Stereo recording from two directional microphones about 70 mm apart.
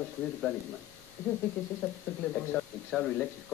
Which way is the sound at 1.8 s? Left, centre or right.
Centre.